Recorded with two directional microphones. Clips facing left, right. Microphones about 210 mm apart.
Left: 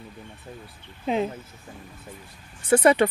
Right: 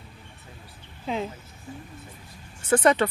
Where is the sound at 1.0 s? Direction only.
20° left (ahead or behind).